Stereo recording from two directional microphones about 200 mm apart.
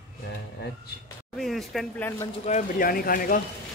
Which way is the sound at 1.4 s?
Centre (ahead or behind).